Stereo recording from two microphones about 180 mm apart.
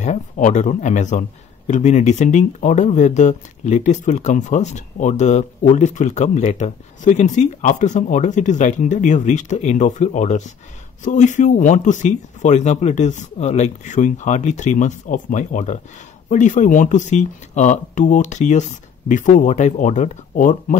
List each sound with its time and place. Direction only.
0.0 s speech: 40° left (ahead or behind)